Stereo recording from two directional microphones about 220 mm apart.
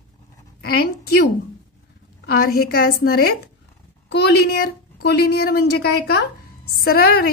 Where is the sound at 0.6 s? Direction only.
45° left (ahead or behind).